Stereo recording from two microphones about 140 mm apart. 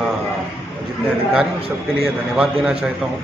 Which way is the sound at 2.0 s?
5° right (ahead or behind).